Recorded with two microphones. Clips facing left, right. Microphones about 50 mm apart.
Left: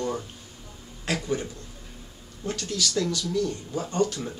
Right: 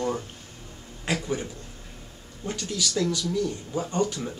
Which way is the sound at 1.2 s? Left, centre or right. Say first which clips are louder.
Left 1 dB; centre.